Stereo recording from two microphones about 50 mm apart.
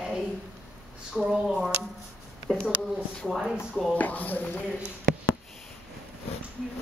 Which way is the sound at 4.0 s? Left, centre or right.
Left.